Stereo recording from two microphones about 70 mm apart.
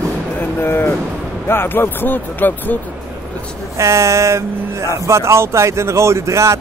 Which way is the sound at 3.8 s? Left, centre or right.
Right.